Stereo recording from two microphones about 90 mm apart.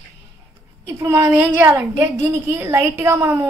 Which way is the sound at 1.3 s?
25° right (ahead or behind).